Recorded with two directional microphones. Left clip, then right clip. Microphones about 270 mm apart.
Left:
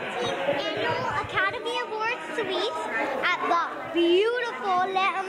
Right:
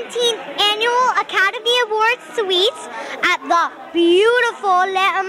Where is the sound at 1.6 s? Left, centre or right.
Right.